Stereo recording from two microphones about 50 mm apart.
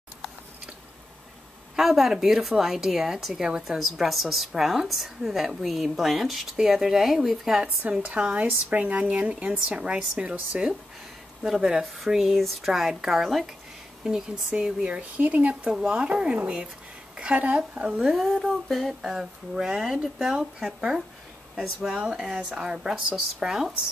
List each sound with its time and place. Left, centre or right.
1.8 s a woman's voice: centre
7.8 s speech: right
8.2 s speech: centre
8.5 s speech: right
11.8 s a woman's voice: centre; by 15.7 s right
15.7 s speech: right
18.0 s a woman's voice: centre